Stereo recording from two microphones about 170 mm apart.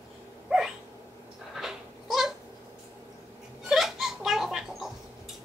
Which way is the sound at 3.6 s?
Centre (ahead or behind).